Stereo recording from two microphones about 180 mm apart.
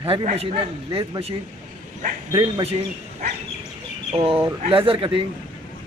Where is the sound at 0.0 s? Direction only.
35° right (ahead or behind).